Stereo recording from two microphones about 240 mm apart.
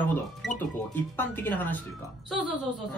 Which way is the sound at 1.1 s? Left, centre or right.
Centre.